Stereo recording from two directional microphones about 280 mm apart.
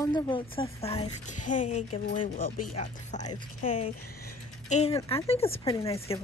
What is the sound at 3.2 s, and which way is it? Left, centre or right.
Speech, centre.